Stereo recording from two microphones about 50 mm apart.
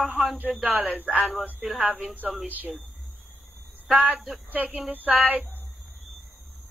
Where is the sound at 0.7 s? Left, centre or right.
Right.